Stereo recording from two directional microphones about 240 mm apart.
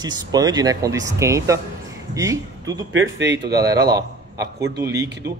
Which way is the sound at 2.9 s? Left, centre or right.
Right.